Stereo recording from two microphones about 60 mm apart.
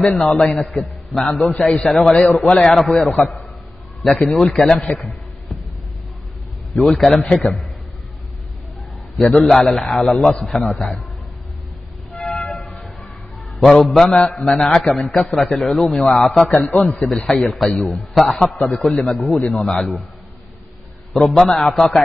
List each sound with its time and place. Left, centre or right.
0.2 s a man's voice: centre
6.7 s a man's voice: centre
9.5 s a man's voice: centre
12.2 s music: centre
13.6 s a man's voice: centre
15.0 s a man's voice: centre
16.6 s a man's voice: left
17.1 s a man's voice: centre
18.4 s a man's voice: centre
18.7 s a man's voice: centre
21.1 s a man's voice: centre